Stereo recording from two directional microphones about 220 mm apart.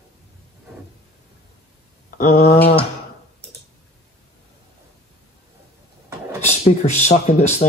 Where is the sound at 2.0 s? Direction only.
40° left (ahead or behind).